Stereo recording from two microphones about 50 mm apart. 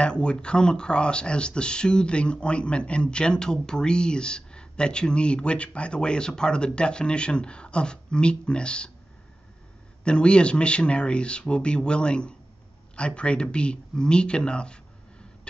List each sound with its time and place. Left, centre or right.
0.0 s speech: centre
10.0 s speech: left